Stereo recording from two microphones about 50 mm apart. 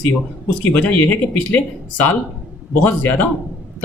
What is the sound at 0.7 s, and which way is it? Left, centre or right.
Speech, left.